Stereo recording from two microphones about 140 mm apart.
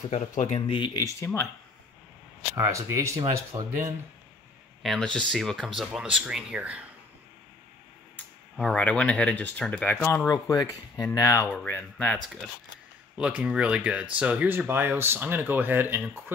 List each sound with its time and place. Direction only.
0.1 s speech: 60° left (ahead or behind)
0.6 s speech: 35° left (ahead or behind)
1.0 s speech: 20° left (ahead or behind)
2.5 s speech: 20° right (ahead or behind)
4.8 s speech: 5° left (ahead or behind)
8.5 s speech: 5° left (ahead or behind)
10.3 s speech: 25° left (ahead or behind)
11.5 s speech: 15° left (ahead or behind)
13.2 s speech: 10° right (ahead or behind)